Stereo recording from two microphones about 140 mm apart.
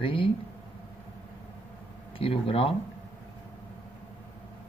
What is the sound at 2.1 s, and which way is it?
Speech, 40° left (ahead or behind).